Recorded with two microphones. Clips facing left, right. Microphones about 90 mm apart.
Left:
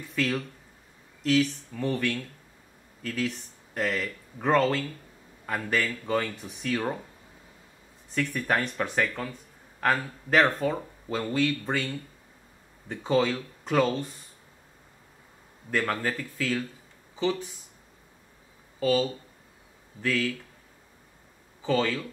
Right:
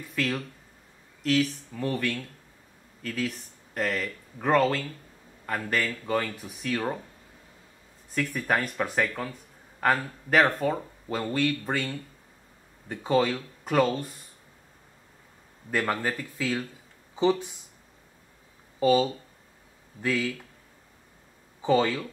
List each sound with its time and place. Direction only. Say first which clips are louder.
0.1 s speech: left 1 dB; centre (ahead or behind)
8.1 s speech: even; centre (ahead or behind)
15.7 s speech: even; 5° right (ahead or behind)
17.1 s a sound: right 4 dB; 20° right (ahead or behind)
18.8 s speech: right 3 dB; 15° right (ahead or behind)
21.6 s speech: right 3 dB; 15° right (ahead or behind)